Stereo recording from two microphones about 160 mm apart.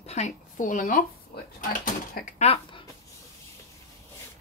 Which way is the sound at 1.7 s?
60° left (ahead or behind).